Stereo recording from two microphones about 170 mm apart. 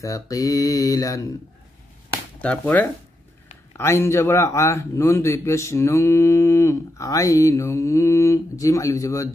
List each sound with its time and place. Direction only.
0.0 s mantra: 20° left (ahead or behind)
2.3 s a man's voice: 5° left (ahead or behind)